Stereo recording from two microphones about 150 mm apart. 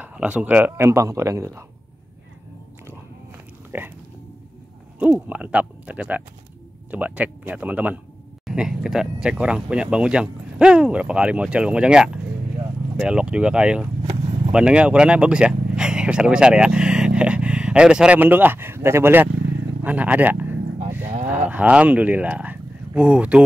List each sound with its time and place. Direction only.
0.0 s speech: 10° right (ahead or behind)
3.7 s a sound: 15° right (ahead or behind)
4.9 s speech: 10° right (ahead or behind)